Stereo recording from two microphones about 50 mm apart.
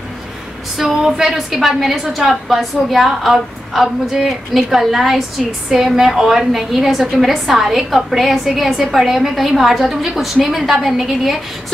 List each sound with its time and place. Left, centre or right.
0.7 s a woman's voice: centre